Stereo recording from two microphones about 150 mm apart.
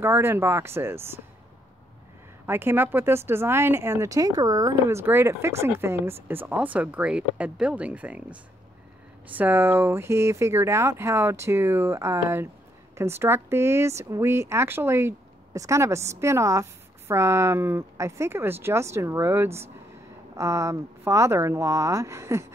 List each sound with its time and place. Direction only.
0.0 s speech: 15° right (ahead or behind)
2.4 s speech: 15° right (ahead or behind)